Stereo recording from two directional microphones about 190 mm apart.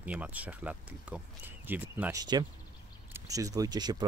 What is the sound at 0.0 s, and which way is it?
Speech, 10° right (ahead or behind).